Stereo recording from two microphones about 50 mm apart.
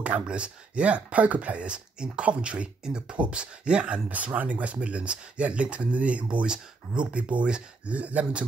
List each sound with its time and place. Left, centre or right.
0.0 s speech: right